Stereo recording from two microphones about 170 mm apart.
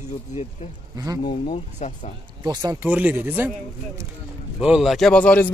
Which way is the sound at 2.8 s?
10° right (ahead or behind).